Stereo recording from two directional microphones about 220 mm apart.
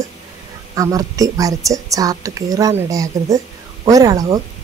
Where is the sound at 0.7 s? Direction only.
15° right (ahead or behind).